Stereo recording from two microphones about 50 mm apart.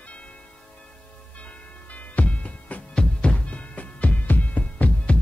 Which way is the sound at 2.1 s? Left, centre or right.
Left.